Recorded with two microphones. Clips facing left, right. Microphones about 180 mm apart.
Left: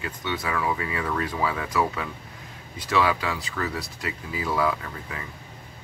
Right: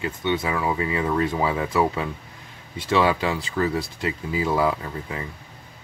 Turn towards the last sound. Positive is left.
turn(degrees=-25)  # may be behind; listen again after turning